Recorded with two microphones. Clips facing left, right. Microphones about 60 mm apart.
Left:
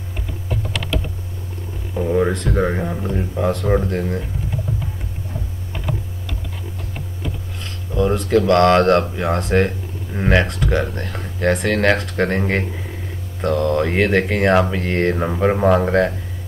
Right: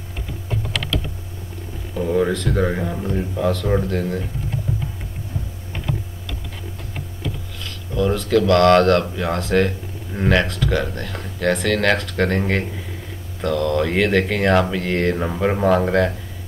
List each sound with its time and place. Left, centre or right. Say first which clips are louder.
2.0 s a sound: left 1 dB; centre
2.7 s speech: left 1 dB; centre
7.6 s speech: left 1 dB; left